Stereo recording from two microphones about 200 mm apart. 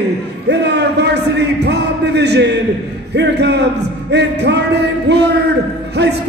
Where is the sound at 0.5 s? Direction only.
55° right (ahead or behind).